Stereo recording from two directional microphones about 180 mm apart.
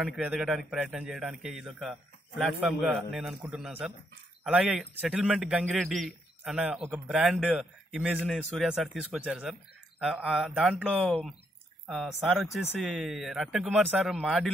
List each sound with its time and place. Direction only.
0.0 s a man's voice: 5° right (ahead or behind)